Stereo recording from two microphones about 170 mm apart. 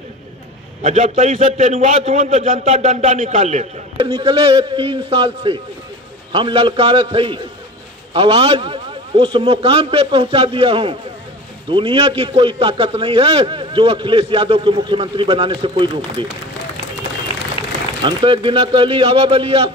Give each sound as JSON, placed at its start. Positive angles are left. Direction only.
{"t": 0.8, "sound": "a man's voice", "side_deg": -45}
{"t": 4.0, "sound": "a man's voice", "side_deg": -30}
{"t": 18.0, "sound": "a man's voice", "side_deg": -30}